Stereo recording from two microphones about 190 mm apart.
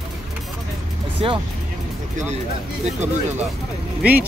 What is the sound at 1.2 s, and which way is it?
Speech, 30° right (ahead or behind).